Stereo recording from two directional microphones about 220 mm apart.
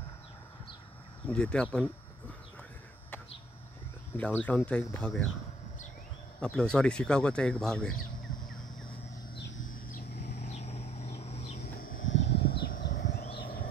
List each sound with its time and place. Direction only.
1.2 s speech: 5° left (ahead or behind)
4.1 s speech: 10° left (ahead or behind)
6.4 s speech: 5° left (ahead or behind)
9.6 s bird: 40° left (ahead or behind)
10.3 s vehicle: 30° left (ahead or behind)
11.1 s a sound: 30° left (ahead or behind)
12.3 s a sound: 45° left (ahead or behind)